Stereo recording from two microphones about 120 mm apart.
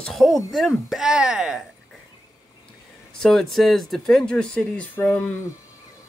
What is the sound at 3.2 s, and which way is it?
Speech, 5° left (ahead or behind).